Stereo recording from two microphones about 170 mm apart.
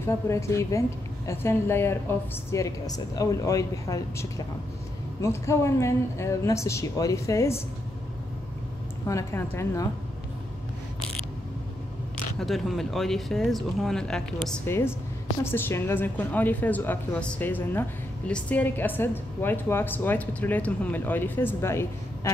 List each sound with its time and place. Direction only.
0.0 s speech: 15° left (ahead or behind)
9.0 s speech: 15° left (ahead or behind)
12.4 s speech: centre (ahead or behind)
14.7 s speech: 15° left (ahead or behind)